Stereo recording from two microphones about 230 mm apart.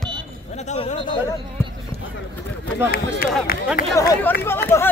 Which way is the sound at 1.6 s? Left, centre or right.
Centre.